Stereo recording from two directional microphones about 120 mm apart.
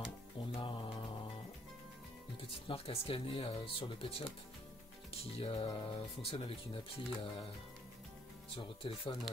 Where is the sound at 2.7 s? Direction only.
50° left (ahead or behind).